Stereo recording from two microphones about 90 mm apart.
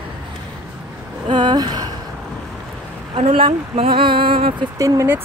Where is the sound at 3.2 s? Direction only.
80° right.